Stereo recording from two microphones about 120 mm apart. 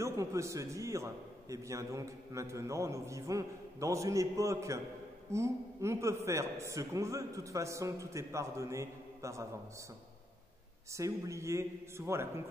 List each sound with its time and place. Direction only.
0.0 s a man's voice: 25° right (ahead or behind)
10.9 s a man's voice: 25° right (ahead or behind)